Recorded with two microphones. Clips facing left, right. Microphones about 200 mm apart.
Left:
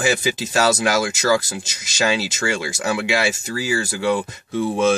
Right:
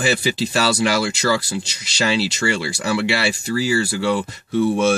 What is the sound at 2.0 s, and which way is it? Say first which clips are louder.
Speech: right 1 dB; 15° left (ahead or behind).